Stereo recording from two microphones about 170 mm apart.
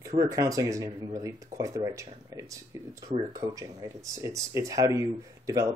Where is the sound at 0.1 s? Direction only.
20° right (ahead or behind).